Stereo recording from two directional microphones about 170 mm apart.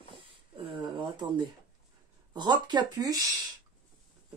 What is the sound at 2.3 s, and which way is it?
Speech, 25° right (ahead or behind).